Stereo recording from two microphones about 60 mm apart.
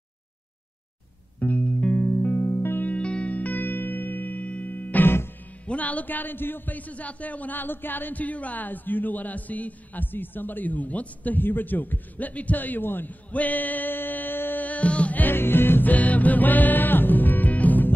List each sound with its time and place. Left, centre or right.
1.4 s music: left
2.9 s music: centre; by 5.3 s left
5.7 s a man's voice: left